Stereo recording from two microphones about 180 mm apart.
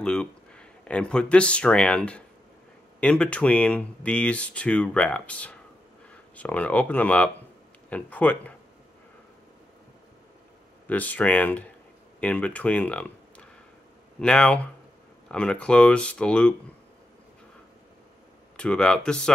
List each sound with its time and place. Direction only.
0.0 s speech: 5° left (ahead or behind)
10.9 s speech: 10° left (ahead or behind)
18.6 s speech: 5° left (ahead or behind)